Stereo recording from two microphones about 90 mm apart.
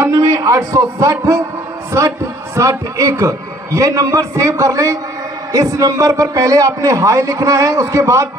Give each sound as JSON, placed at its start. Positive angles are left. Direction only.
{"t": 0.1, "sound": "a man's voice", "side_deg": -40}